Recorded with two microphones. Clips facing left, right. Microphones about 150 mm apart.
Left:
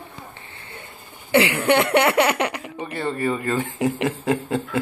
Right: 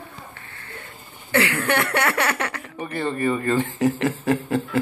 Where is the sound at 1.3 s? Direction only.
20° left (ahead or behind).